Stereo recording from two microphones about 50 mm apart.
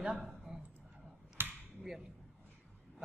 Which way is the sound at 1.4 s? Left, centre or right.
Right.